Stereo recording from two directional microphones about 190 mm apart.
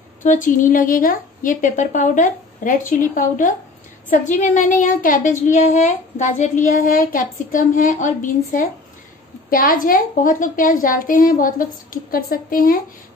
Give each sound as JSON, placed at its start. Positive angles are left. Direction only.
{"t": 0.2, "sound": "a woman's voice", "side_deg": 40}
{"t": 9.5, "sound": "a woman's voice", "side_deg": 50}